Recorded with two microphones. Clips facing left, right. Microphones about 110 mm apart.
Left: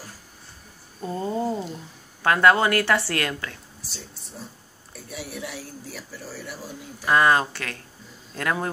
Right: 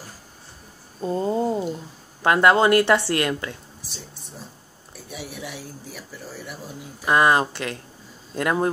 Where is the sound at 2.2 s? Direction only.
20° right (ahead or behind).